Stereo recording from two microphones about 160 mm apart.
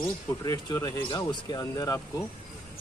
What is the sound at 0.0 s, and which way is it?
Speech, 20° left (ahead or behind).